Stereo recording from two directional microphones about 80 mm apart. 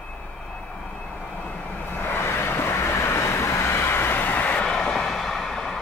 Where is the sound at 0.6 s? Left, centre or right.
Centre.